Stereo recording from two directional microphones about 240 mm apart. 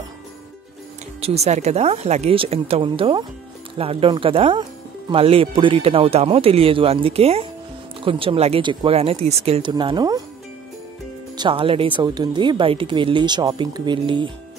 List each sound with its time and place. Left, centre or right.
1.2 s speech: right
11.3 s speech: right